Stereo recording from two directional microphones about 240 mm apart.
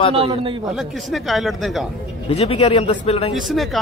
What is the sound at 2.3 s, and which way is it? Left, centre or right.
A man's voice, left.